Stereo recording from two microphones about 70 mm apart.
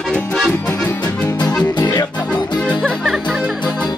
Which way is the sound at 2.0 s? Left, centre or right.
Centre.